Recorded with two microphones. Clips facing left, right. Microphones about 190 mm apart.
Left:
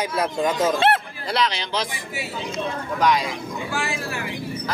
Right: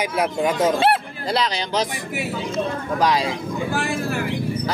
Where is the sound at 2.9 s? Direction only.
35° right (ahead or behind).